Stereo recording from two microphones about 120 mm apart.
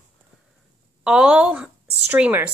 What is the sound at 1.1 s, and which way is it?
A woman's voice, 10° right (ahead or behind).